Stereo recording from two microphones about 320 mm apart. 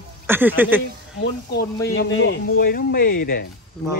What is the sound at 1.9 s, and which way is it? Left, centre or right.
Speech, left.